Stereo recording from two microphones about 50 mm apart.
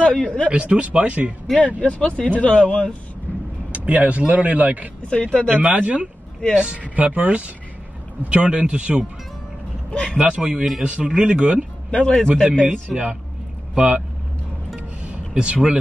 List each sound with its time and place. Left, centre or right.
0.0 s speech: left
0.5 s speech: right
1.8 s speech: left
3.7 s speech: right
5.1 s speech: left
5.5 s speech: right
9.8 s speech: left
10.1 s speech: right
10.5 s speech: centre
10.8 s speech: right
11.9 s a man's voice: centre
12.6 s speech: right
15.3 s speech: centre